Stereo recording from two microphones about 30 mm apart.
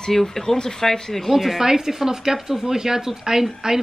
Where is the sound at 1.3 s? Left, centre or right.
Centre.